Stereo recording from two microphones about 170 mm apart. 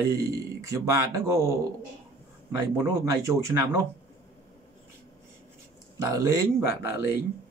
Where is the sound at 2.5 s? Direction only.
20° right (ahead or behind).